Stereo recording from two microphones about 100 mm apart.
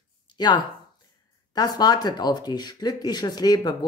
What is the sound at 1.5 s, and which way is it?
Speech, 40° left (ahead or behind).